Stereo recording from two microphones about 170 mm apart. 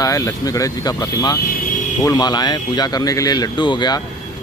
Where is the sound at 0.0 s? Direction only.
20° left (ahead or behind).